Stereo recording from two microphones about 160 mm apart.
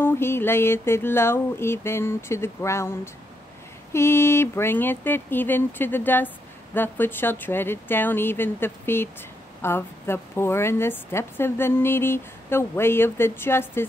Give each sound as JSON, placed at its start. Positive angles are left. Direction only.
{"t": 0.0, "sound": "speech", "side_deg": 15}